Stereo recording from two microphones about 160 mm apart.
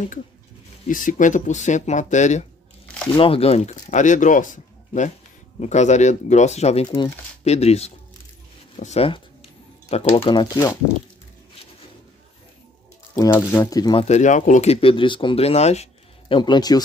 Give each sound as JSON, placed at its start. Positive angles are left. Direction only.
{"t": 0.8, "sound": "speech", "side_deg": 55}
{"t": 3.2, "sound": "speech", "side_deg": 35}
{"t": 13.1, "sound": "speech", "side_deg": 15}
{"t": 14.0, "sound": "speech", "side_deg": 45}
{"t": 16.3, "sound": "speech", "side_deg": 25}